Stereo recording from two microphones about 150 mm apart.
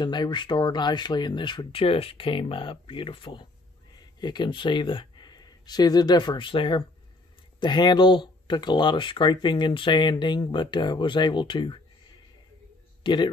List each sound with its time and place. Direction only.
0.0 s speech: 30° left (ahead or behind)